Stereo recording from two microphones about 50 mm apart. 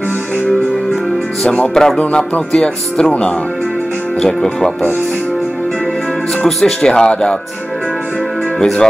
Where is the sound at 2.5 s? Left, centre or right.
Centre.